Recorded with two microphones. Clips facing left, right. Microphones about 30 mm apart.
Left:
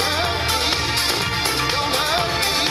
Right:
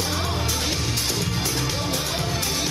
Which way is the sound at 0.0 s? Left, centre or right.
Left.